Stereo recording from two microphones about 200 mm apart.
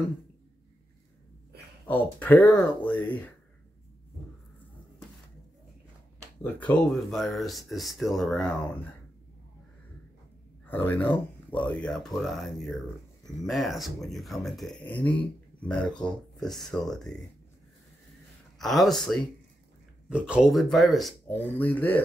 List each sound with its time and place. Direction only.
1.9 s speech: 10° left (ahead or behind)
6.4 s speech: 5° left (ahead or behind)
10.7 s speech: 10° left (ahead or behind)
18.6 s speech: centre (ahead or behind)